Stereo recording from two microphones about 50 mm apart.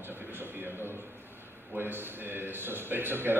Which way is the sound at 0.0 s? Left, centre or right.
Right.